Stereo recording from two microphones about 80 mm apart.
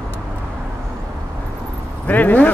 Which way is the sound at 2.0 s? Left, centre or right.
Left.